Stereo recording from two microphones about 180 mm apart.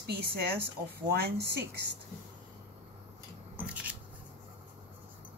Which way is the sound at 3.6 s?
5° right (ahead or behind).